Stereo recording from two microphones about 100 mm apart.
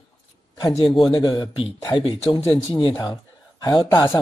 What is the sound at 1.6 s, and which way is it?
Speech, 60° left (ahead or behind).